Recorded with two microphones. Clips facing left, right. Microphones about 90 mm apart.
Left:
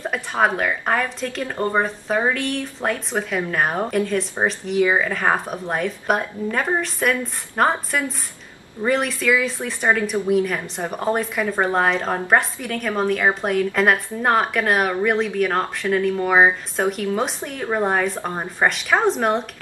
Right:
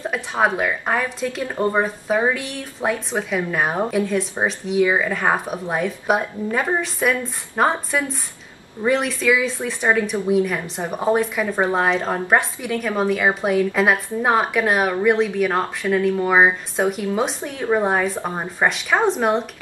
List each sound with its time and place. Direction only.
0.0 s a woman's voice: centre (ahead or behind)